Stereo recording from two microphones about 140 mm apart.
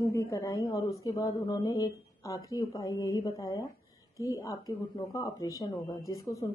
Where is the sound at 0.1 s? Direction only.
20° left (ahead or behind).